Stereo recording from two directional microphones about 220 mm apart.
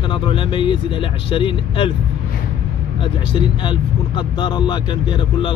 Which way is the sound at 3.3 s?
20° left (ahead or behind).